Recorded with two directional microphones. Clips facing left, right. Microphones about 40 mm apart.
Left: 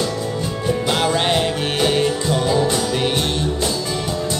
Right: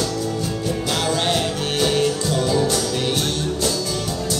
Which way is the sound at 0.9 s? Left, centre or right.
Left.